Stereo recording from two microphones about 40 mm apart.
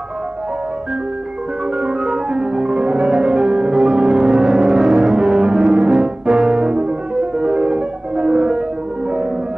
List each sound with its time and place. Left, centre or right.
1.8 s music: centre
5.0 s music: centre
5.3 s music: centre